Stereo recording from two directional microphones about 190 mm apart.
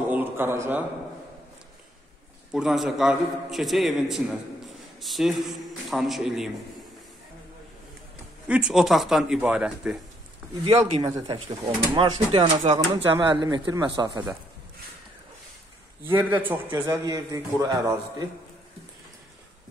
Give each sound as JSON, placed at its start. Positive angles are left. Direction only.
{"t": 0.1, "sound": "a sound", "side_deg": -10}
{"t": 2.5, "sound": "a man's voice", "side_deg": 0}
{"t": 8.5, "sound": "a man's voice", "side_deg": -5}
{"t": 10.6, "sound": "speech", "side_deg": -35}
{"t": 11.0, "sound": "speech", "side_deg": -20}
{"t": 16.0, "sound": "a man's voice", "side_deg": -10}